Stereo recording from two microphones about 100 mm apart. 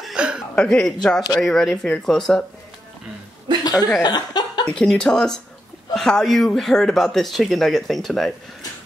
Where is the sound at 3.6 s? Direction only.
40° left (ahead or behind).